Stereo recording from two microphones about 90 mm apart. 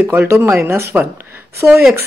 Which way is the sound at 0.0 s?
25° right (ahead or behind).